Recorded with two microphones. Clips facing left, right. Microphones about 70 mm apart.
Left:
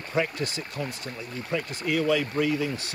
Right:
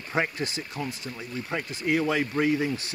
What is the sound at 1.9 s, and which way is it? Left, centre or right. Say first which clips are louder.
Speech: even; right.